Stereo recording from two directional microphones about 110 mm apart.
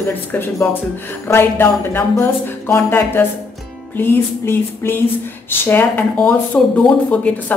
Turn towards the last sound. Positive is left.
turn(degrees=10)  # may be behind; listen again after turning